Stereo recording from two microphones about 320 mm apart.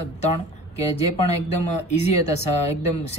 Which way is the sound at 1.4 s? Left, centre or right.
Centre.